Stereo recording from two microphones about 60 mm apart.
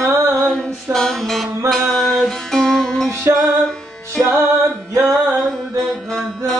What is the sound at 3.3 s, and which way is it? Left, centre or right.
Music, right.